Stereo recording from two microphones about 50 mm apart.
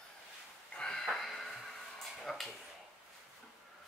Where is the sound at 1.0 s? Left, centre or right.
Centre.